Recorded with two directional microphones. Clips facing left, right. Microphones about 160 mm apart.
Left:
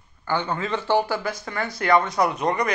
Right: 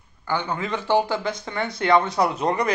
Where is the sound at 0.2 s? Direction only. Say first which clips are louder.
Left 1 dB; 15° right (ahead or behind).